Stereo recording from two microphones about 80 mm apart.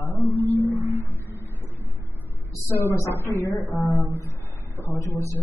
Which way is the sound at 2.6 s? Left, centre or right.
Left.